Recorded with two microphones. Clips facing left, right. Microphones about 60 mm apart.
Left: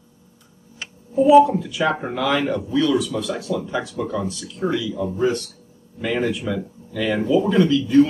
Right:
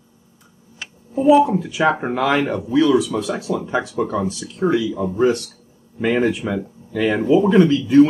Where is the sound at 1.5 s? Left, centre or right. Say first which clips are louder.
Right 3 dB; right.